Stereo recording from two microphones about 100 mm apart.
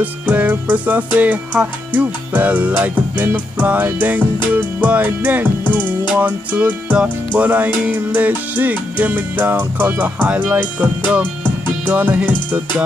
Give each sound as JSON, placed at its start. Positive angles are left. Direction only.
{"t": 0.0, "sound": "music", "side_deg": -15}
{"t": 11.8, "sound": "speech", "side_deg": -20}